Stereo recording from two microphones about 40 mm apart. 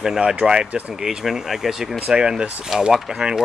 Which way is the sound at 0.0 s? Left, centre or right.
Centre.